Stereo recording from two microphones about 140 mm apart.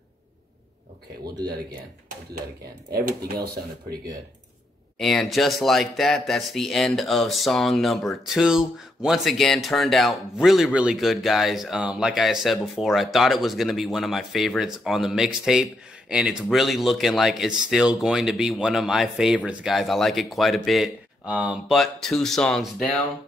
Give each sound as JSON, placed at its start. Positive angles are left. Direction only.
{"t": 2.9, "sound": "speech", "side_deg": -90}
{"t": 4.9, "sound": "speech", "side_deg": 0}